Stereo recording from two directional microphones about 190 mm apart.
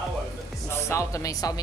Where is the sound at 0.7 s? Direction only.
15° left (ahead or behind).